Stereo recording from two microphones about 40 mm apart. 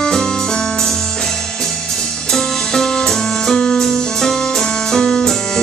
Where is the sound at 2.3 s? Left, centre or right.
Centre.